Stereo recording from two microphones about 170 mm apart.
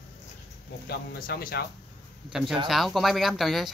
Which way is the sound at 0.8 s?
65° left (ahead or behind).